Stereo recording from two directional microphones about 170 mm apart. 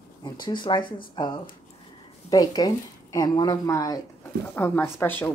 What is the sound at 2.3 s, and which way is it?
Speech, 20° left (ahead or behind).